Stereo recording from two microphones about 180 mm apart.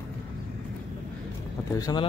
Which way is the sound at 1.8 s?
20° left (ahead or behind).